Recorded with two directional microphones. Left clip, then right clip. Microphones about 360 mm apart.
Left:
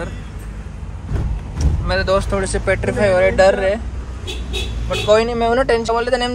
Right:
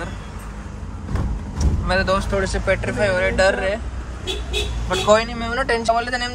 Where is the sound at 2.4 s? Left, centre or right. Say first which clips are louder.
Left 2 dB; centre.